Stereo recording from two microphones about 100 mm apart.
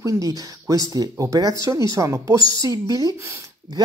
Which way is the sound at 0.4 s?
35° right (ahead or behind).